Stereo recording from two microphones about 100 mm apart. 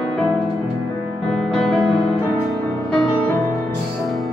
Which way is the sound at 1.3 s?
5° left (ahead or behind).